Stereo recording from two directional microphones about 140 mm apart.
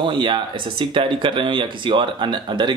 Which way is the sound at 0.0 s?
35° right (ahead or behind).